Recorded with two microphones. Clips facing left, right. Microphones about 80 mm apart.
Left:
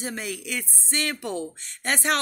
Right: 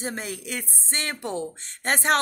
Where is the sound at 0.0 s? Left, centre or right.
Right.